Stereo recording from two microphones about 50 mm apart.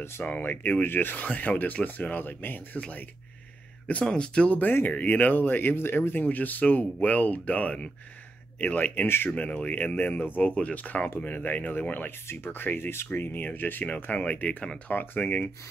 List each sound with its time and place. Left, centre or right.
0.2 s speech: left
4.0 s speech: centre
4.9 s speech: left
6.2 s speech: left
9.0 s speech: left
9.3 s speech: left
12.3 s speech: left